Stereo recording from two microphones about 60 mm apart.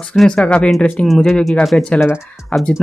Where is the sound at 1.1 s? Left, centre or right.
Centre.